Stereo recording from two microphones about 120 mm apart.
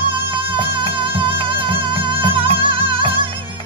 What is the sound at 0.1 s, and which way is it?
Music, 45° right (ahead or behind).